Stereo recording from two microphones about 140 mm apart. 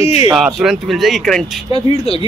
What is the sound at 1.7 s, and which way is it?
Speech, 45° left (ahead or behind).